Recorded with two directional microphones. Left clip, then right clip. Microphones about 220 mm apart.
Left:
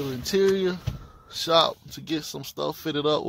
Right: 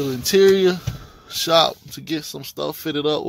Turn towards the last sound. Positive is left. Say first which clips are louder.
# right 3 dB
turn(degrees=0)  # may be behind; listen again after turning